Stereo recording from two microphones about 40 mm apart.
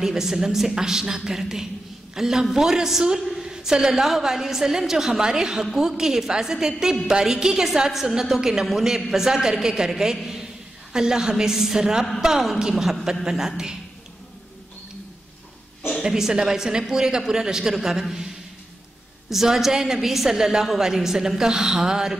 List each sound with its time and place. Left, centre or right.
0.0 s a man's voice: centre
16.0 s a man's voice: centre
19.2 s a man's voice: centre